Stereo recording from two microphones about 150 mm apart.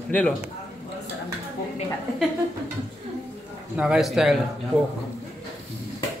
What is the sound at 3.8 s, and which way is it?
Speech, 5° right (ahead or behind).